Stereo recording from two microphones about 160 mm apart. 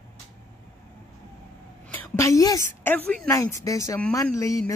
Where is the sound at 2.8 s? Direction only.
10° left (ahead or behind).